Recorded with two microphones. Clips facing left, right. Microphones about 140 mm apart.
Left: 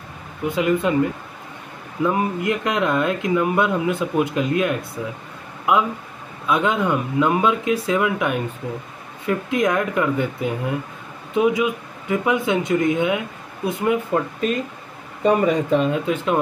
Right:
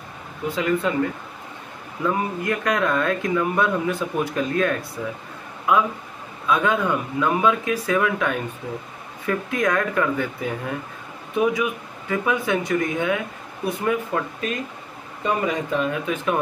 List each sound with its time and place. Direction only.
0.5 s speech: 15° left (ahead or behind)
2.0 s speech: 20° left (ahead or behind)
9.5 s speech: 20° left (ahead or behind)
15.2 s speech: 35° left (ahead or behind)